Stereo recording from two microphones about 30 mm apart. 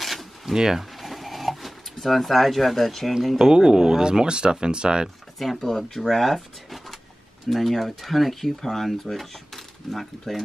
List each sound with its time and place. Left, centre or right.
0.0 s zipper: centre
0.5 s speech: centre
0.9 s a sound: centre
3.3 s speech: right
5.6 s speech: centre